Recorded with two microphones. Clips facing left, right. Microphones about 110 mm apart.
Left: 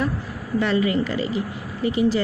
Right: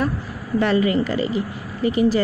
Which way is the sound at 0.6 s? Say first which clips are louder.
Right 2 dB; 50° right (ahead or behind).